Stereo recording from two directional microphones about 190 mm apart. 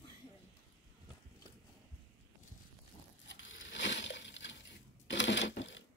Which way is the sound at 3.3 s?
75° left (ahead or behind).